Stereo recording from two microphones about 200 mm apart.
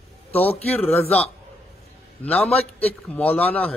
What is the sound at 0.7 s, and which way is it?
Speech, 10° left (ahead or behind).